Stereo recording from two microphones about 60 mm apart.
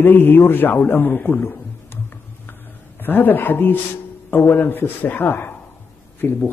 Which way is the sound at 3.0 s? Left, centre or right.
Left.